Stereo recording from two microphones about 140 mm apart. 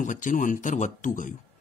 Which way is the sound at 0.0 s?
65° left (ahead or behind).